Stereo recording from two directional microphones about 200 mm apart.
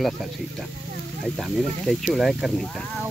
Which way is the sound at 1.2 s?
Centre (ahead or behind).